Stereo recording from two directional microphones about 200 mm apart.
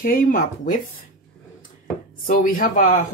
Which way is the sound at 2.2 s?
40° left (ahead or behind).